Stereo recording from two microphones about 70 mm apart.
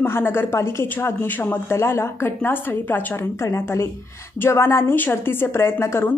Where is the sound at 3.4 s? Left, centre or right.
Left.